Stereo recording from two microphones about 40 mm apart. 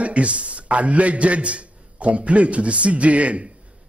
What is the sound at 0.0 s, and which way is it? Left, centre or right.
A man's voice, right.